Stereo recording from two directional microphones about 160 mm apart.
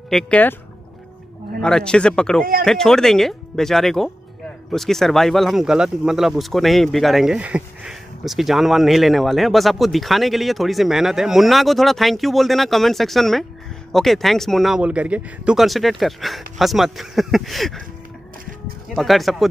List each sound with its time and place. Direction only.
0.1 s speech: 10° left (ahead or behind)
1.6 s speech: 5° left (ahead or behind)
18.9 s speech: centre (ahead or behind)